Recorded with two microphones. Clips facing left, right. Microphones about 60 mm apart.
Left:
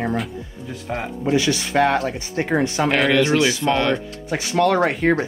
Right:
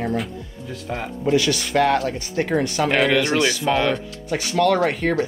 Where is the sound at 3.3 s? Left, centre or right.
Centre.